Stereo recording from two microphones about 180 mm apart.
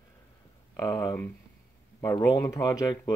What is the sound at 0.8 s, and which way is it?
Speech, 20° left (ahead or behind).